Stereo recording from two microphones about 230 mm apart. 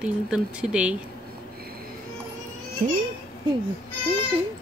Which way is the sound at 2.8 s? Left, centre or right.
Right.